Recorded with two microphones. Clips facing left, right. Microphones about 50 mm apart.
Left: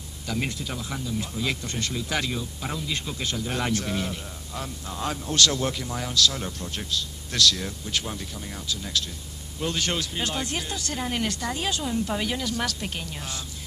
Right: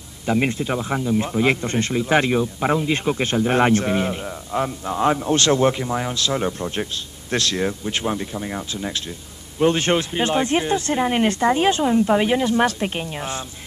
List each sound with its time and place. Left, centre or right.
0.3 s speech: right